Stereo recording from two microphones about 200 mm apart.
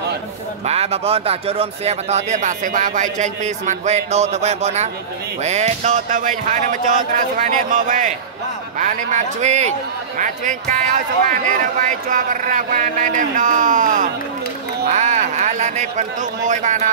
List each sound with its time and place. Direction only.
0.7 s a man's voice: 30° right (ahead or behind)